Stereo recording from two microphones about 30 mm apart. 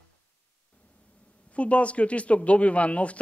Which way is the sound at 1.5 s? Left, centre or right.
Left.